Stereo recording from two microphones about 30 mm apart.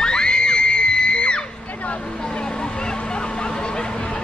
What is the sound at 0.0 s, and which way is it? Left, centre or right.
Crowd, left.